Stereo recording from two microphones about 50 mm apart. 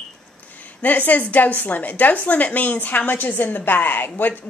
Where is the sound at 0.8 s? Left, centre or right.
Left.